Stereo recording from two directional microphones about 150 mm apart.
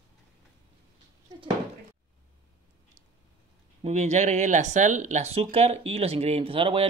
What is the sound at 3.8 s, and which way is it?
Speech, 50° right (ahead or behind).